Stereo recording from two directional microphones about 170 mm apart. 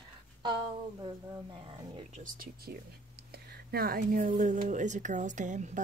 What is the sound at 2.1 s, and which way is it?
A woman's voice, 55° right (ahead or behind).